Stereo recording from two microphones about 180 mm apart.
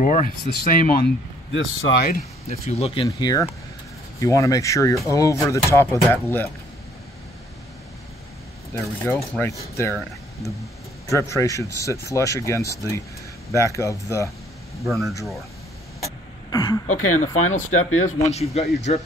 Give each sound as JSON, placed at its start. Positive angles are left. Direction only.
{"t": 0.0, "sound": "speech", "side_deg": 45}
{"t": 1.5, "sound": "speech", "side_deg": 90}
{"t": 2.4, "sound": "speech", "side_deg": 35}
{"t": 3.1, "sound": "speech", "side_deg": 20}
{"t": 8.7, "sound": "speech", "side_deg": 15}
{"t": 11.1, "sound": "speech", "side_deg": 15}
{"t": 14.9, "sound": "speech", "side_deg": 0}
{"t": 16.0, "sound": "throat clearing", "side_deg": 20}
{"t": 16.8, "sound": "speech", "side_deg": 45}